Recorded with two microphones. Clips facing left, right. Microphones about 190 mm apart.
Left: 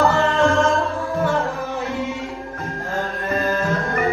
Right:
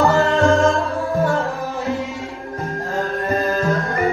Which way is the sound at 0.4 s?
15° right (ahead or behind).